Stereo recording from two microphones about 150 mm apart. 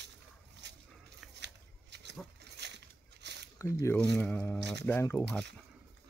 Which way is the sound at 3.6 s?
20° left (ahead or behind).